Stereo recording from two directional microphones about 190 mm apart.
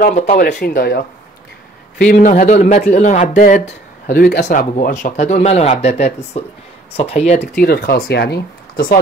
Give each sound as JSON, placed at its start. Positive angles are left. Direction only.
{"t": 0.0, "sound": "speech", "side_deg": 40}
{"t": 0.4, "sound": "a man's voice", "side_deg": 50}
{"t": 4.1, "sound": "a man's voice", "side_deg": 55}
{"t": 4.5, "sound": "speech", "side_deg": 45}
{"t": 7.0, "sound": "speech", "side_deg": 35}
{"t": 7.6, "sound": "a man's voice", "side_deg": 55}